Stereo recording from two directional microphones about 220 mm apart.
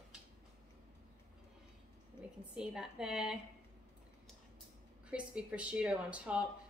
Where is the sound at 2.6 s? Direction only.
5° right (ahead or behind).